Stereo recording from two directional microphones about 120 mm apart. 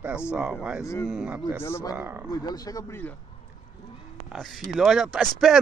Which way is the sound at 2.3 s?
30° left (ahead or behind).